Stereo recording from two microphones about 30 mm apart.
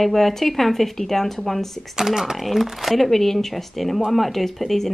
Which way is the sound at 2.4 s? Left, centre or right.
Centre.